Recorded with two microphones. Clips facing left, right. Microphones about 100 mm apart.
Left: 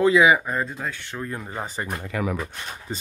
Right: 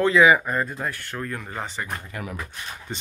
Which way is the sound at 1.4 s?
10° left (ahead or behind).